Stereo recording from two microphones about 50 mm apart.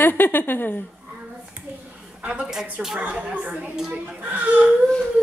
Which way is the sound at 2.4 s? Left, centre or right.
Centre.